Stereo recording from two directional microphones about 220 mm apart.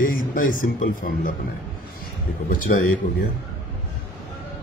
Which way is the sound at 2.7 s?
45° left (ahead or behind).